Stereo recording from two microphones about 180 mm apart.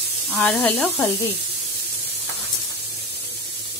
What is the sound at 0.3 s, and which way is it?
Speech, 5° left (ahead or behind).